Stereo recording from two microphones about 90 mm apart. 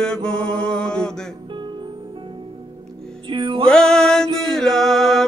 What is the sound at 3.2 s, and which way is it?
Music, 70° right (ahead or behind).